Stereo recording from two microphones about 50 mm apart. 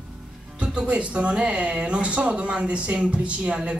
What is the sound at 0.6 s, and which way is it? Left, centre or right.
Speech, right.